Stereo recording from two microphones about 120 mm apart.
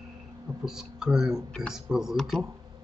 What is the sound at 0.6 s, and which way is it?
Speech, 5° right (ahead or behind).